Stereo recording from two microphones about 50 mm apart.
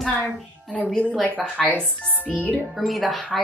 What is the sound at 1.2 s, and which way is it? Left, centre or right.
Speech, left.